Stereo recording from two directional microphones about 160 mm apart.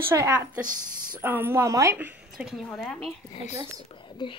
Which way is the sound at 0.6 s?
55° right (ahead or behind).